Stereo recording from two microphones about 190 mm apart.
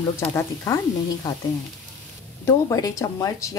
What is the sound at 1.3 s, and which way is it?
Frying, 20° left (ahead or behind).